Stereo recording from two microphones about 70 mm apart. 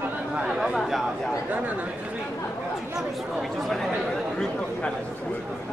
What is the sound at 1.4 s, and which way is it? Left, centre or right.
Speech, right.